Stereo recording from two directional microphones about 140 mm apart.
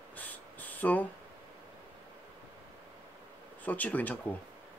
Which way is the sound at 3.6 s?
10° left (ahead or behind).